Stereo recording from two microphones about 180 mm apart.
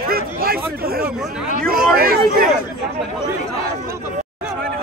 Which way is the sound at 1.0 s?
5° right (ahead or behind).